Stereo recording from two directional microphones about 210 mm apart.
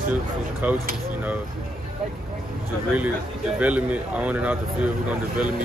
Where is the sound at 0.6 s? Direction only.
10° right (ahead or behind).